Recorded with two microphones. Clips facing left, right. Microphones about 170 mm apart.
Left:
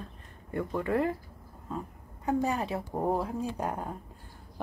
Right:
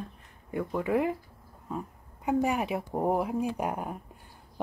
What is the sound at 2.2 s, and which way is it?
Speech, 15° right (ahead or behind).